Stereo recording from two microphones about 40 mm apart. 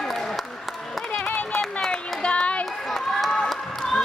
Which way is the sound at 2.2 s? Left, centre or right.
Left.